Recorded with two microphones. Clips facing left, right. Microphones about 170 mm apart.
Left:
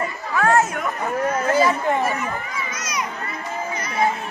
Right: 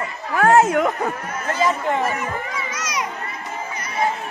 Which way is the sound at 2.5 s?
90° right.